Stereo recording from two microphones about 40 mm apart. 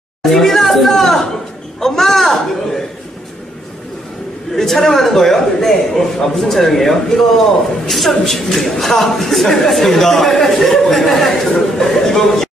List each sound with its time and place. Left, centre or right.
0.2 s chatter: centre
1.8 s a sound: centre
4.6 s a man's voice: centre